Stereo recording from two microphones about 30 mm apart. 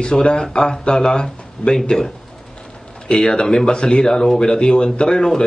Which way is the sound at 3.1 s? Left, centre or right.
Centre.